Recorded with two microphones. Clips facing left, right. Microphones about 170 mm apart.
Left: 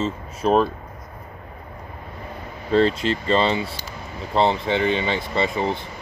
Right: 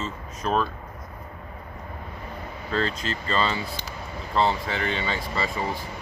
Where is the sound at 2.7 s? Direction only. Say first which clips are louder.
Left 9 dB; 30° left (ahead or behind).